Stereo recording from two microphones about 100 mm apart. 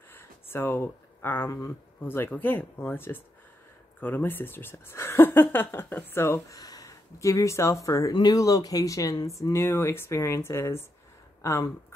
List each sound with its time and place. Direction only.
0.1 s a sound: 25° left (ahead or behind)
2.0 s speech: 20° left (ahead or behind)
6.6 s speech: 35° left (ahead or behind)